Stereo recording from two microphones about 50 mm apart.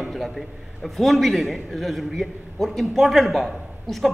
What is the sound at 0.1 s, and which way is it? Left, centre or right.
A man's voice, centre.